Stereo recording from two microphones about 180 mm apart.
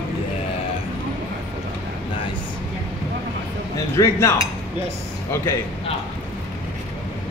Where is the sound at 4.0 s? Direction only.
15° left (ahead or behind).